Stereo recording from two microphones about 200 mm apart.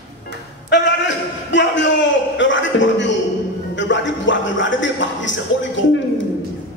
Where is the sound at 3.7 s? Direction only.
65° left (ahead or behind).